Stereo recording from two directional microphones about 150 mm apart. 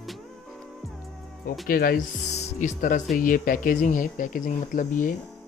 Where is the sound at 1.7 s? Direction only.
75° left (ahead or behind).